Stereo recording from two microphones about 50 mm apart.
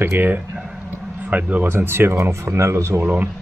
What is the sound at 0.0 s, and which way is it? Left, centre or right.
Speech, right.